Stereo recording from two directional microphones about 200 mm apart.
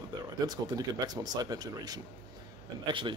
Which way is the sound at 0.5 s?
20° right (ahead or behind).